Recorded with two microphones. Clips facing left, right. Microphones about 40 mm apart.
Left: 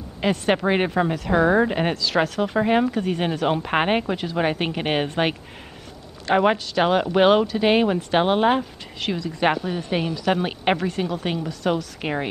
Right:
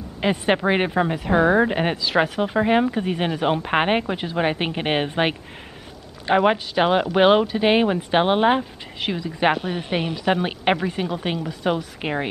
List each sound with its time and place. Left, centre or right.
0.2 s speech: centre
9.7 s a woman's voice: right
10.3 s speech: centre